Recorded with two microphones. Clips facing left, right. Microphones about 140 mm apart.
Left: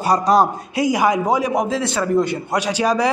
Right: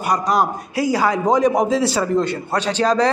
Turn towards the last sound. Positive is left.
turn(degrees=10)  # may be behind; listen again after turning